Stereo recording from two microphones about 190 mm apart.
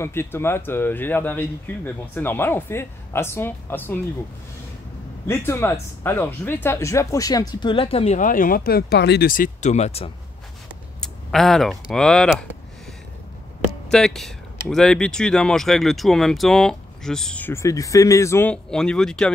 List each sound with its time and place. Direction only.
0.0 s speech: 10° left (ahead or behind)
5.2 s speech: 10° left (ahead or behind); by 10.1 s 35° left (ahead or behind)
11.0 s speech: centre (ahead or behind)
13.8 s speech: 5° left (ahead or behind)